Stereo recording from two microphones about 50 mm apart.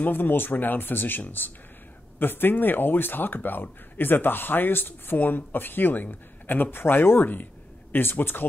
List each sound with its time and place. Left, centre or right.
0.0 s speech: left